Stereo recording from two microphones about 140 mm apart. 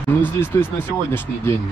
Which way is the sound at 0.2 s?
15° left (ahead or behind).